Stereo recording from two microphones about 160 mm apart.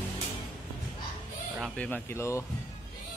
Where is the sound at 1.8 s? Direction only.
15° left (ahead or behind).